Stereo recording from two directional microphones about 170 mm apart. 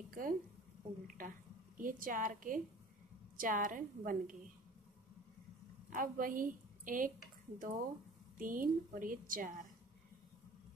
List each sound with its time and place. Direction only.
0.1 s a woman's voice: 55° right (ahead or behind)
1.0 s a sound: 50° right (ahead or behind)
1.8 s a woman's voice: 55° right (ahead or behind)
5.9 s a woman's voice: 55° right (ahead or behind)